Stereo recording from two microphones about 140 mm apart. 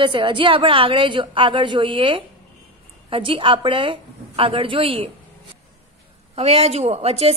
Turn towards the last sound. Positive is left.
turn(degrees=-50)  # may be behind; listen again after turning